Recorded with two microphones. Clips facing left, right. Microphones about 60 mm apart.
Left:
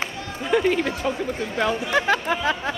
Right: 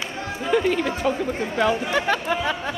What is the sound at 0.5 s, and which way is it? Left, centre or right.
Run, centre.